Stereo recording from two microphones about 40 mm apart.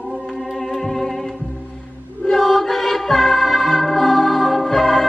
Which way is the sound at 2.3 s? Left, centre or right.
Centre.